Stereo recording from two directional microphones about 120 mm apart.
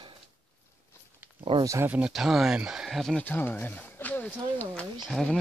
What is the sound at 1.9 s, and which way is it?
Speech, 5° right (ahead or behind).